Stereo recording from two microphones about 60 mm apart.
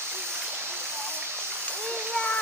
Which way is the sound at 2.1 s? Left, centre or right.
Centre.